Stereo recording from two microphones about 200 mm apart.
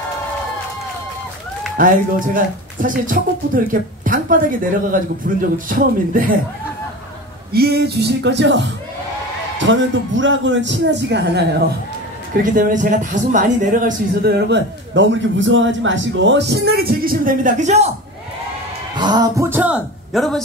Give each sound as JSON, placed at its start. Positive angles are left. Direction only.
{"t": 1.8, "sound": "speech", "side_deg": -45}
{"t": 7.5, "sound": "a man's voice", "side_deg": -55}
{"t": 12.4, "sound": "a man's voice", "side_deg": -40}
{"t": 14.5, "sound": "a man's voice", "side_deg": -65}
{"t": 18.9, "sound": "speech", "side_deg": -20}